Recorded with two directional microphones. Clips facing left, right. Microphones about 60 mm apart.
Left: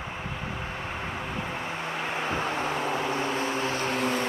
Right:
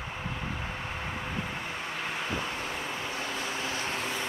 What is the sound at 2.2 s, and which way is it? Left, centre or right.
Vehicle, left.